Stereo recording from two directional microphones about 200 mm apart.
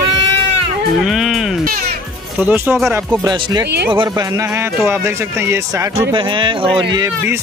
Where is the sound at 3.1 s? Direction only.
20° right (ahead or behind).